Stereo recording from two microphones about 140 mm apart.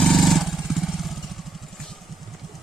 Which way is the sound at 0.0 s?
Centre (ahead or behind).